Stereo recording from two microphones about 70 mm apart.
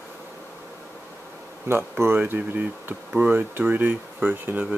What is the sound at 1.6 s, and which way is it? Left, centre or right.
Speech, right.